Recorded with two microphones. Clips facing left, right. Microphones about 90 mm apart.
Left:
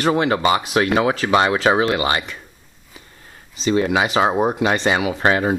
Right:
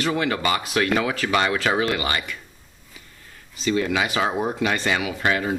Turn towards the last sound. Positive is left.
turn(degrees=35)  # may be behind; listen again after turning